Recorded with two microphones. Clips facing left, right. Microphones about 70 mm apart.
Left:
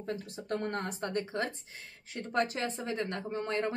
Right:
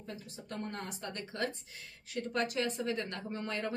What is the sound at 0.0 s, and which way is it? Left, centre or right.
Speech, left.